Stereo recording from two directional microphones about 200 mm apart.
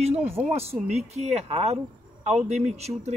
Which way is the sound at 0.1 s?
10° right (ahead or behind).